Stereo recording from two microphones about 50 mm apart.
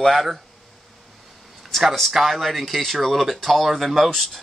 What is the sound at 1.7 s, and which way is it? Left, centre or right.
Speech, centre.